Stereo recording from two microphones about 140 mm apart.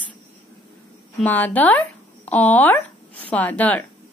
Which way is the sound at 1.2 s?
10° left (ahead or behind).